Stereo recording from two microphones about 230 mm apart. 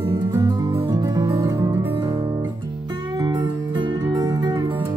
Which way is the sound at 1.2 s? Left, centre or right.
Centre.